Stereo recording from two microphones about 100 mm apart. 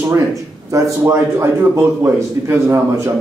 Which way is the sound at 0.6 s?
30° right (ahead or behind).